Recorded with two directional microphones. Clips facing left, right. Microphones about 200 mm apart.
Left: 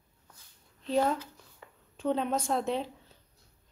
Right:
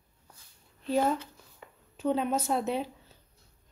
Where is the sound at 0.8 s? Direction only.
5° right (ahead or behind).